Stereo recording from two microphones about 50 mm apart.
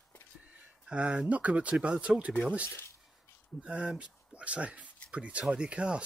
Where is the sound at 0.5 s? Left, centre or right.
Right.